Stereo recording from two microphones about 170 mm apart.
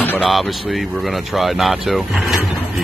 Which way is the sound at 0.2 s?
Centre (ahead or behind).